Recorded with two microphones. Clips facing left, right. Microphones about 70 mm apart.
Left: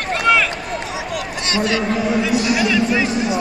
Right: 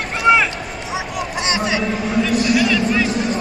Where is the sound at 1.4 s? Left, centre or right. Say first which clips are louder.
Left 2 dB; centre.